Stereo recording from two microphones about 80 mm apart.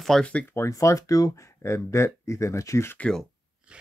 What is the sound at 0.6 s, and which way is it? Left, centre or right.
Speech, left.